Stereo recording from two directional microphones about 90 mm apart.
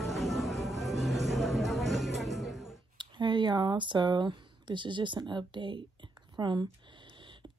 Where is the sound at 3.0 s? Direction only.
60° right (ahead or behind).